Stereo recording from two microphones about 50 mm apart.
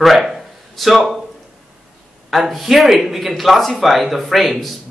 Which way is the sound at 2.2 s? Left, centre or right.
Centre.